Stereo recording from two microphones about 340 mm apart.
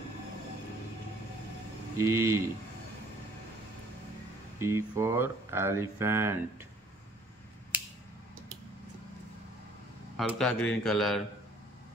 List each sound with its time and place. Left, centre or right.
2.0 s speech: centre
4.6 s speech: centre
10.1 s speech: centre